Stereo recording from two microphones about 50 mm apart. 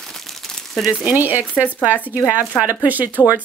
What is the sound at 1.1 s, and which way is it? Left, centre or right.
Speech, right.